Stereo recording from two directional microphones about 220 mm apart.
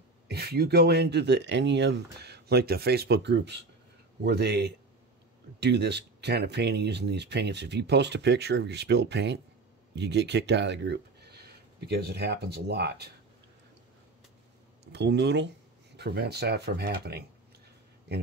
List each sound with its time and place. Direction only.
0.3 s speech: 45° right (ahead or behind)
14.9 s speech: 50° right (ahead or behind)